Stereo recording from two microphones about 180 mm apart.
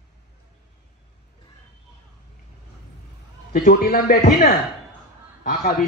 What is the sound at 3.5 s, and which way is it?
A man's voice, 55° left (ahead or behind).